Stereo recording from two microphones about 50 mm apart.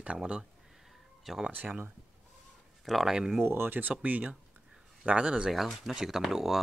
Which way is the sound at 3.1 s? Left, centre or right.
Centre.